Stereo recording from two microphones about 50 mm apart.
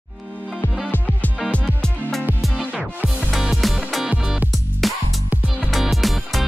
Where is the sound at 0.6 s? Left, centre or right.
Left.